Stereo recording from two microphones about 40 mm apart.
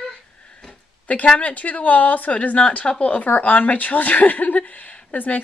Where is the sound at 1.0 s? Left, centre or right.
Left.